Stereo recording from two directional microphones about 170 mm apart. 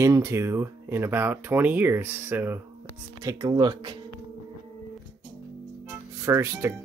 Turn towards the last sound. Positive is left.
turn(degrees=-20)  # may be behind; listen again after turning